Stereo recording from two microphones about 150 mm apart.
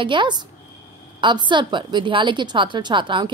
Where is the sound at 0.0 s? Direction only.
30° right (ahead or behind).